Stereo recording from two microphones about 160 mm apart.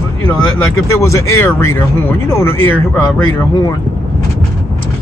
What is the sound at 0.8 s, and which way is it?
Speech, 20° left (ahead or behind).